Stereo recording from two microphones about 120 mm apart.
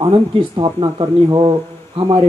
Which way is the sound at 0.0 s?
40° right (ahead or behind).